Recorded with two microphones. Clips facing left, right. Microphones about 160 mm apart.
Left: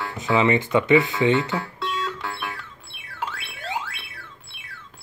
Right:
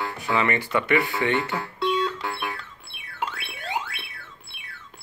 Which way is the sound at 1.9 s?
Centre (ahead or behind).